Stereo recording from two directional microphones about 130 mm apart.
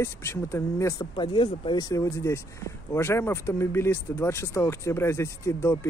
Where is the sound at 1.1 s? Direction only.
40° left (ahead or behind).